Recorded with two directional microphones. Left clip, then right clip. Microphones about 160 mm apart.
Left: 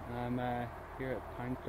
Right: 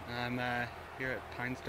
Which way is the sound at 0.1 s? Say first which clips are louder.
Right 2 dB; 15° right (ahead or behind).